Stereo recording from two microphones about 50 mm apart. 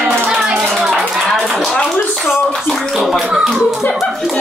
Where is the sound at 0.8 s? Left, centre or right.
Centre.